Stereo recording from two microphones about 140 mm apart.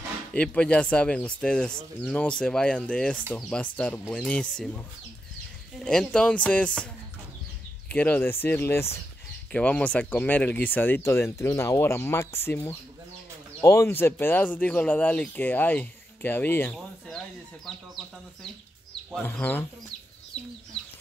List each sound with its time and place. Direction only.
0.3 s speech: 10° left (ahead or behind)
5.9 s speech: 5° left (ahead or behind)
7.9 s speech: 15° left (ahead or behind)
17.6 s speech: centre (ahead or behind)
19.2 s speech: 15° left (ahead or behind)